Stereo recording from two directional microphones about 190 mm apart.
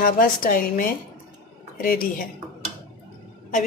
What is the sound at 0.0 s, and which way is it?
A woman's voice, 50° left (ahead or behind).